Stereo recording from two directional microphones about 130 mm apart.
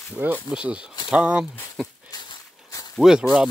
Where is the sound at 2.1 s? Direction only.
35° left (ahead or behind).